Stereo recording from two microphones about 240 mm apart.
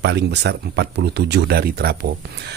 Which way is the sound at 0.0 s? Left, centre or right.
Right.